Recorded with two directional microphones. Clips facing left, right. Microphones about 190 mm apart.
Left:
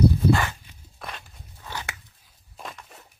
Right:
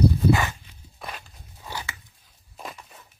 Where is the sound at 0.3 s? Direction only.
15° right (ahead or behind).